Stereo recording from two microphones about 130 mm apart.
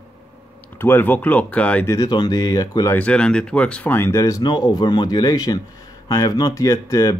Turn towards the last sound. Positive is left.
turn(degrees=25)  # may be behind; listen again after turning